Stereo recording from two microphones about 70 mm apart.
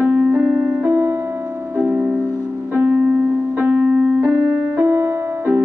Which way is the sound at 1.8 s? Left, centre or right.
Centre.